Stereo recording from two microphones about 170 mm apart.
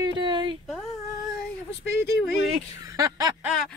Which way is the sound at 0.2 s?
25° right (ahead or behind).